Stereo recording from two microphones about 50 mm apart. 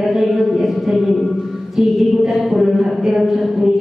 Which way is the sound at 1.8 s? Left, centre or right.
Centre.